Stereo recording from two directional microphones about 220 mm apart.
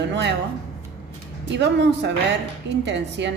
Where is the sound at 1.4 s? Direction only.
55° right (ahead or behind).